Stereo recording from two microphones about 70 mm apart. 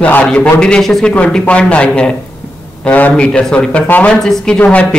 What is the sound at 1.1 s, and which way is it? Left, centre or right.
A man's voice, centre.